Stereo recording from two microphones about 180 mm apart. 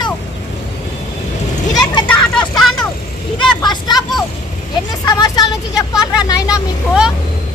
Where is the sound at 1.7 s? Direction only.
25° left (ahead or behind).